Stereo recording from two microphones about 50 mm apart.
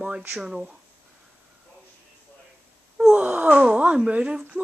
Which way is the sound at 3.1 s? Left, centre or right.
Right.